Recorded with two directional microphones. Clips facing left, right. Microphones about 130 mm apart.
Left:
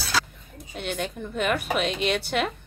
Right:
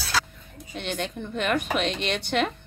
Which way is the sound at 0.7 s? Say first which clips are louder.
Even; 5° left (ahead or behind).